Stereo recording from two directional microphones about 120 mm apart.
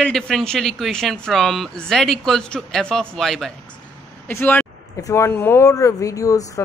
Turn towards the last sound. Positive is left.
turn(degrees=30)  # may be behind; listen again after turning